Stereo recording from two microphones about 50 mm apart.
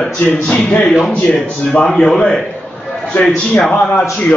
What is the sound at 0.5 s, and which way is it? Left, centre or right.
Speech, left.